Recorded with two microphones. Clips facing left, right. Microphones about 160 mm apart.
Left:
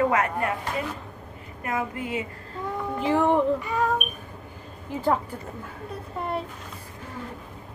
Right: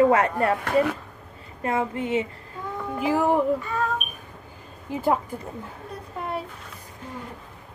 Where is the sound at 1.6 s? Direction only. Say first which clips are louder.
Right 4 dB; 25° right (ahead or behind).